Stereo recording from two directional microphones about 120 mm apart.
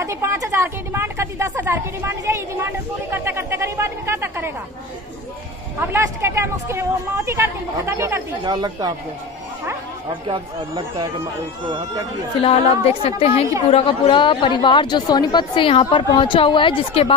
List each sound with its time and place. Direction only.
0.0 s speech: 25° right (ahead or behind)
5.8 s speech: 20° right (ahead or behind)
8.5 s speech: 35° right (ahead or behind)
12.4 s a woman's voice: 55° left (ahead or behind)